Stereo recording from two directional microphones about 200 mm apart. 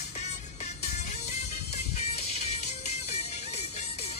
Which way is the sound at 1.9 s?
30° left (ahead or behind).